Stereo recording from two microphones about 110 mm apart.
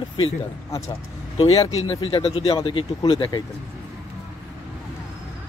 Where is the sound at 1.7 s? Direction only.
55° left (ahead or behind).